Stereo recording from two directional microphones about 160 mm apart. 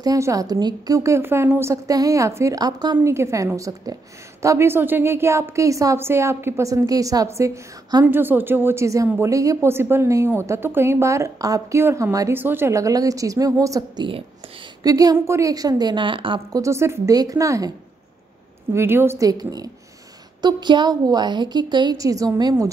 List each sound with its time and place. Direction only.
0.0 s a woman's voice: 20° right (ahead or behind)
16.6 s a woman's voice: 15° right (ahead or behind)